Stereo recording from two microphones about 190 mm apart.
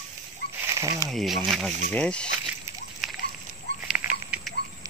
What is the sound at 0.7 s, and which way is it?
Speech, 20° right (ahead or behind).